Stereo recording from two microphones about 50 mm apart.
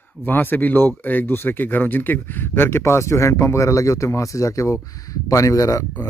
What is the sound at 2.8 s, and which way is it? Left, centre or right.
Speech, left.